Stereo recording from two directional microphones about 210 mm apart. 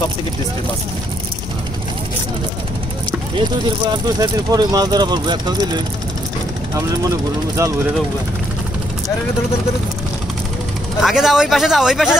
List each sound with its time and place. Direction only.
3.3 s speech: 20° right (ahead or behind)
11.0 s a man's voice: centre (ahead or behind)